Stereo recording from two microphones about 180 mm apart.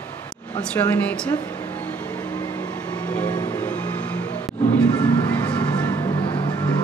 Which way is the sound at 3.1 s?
10° left (ahead or behind).